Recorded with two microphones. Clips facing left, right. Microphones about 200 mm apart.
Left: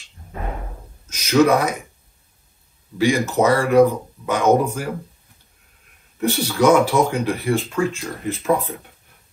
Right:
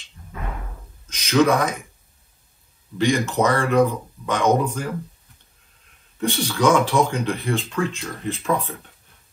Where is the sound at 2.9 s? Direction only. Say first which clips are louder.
Left 2 dB; 10° left (ahead or behind).